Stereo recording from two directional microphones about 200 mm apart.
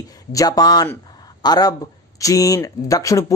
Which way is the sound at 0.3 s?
20° left (ahead or behind).